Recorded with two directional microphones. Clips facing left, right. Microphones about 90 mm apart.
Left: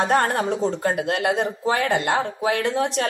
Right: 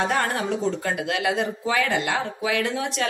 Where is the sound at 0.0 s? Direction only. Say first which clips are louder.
Left 4 dB; 40° left (ahead or behind).